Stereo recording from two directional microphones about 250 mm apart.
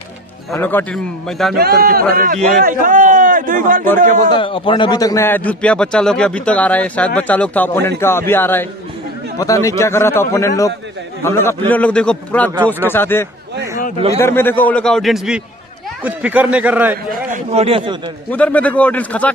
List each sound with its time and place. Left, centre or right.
0.5 s a man's voice: centre
1.6 s a man's voice: right
4.3 s a man's voice: left; by 17.2 s centre
17.3 s speech: right
18.3 s a man's voice: centre